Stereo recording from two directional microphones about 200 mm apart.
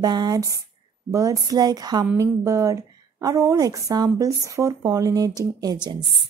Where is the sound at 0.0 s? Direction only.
20° right (ahead or behind).